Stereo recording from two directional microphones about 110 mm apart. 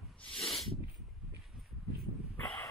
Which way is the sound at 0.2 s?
5° left (ahead or behind).